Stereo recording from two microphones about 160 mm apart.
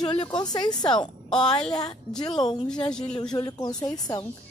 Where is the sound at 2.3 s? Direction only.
25° left (ahead or behind).